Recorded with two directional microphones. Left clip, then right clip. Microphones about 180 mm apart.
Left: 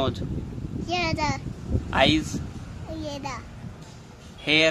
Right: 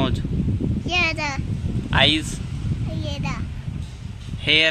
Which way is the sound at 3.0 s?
15° left (ahead or behind).